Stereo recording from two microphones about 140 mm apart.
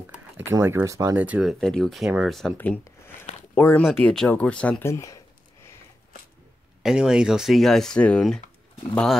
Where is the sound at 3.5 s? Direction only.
15° left (ahead or behind).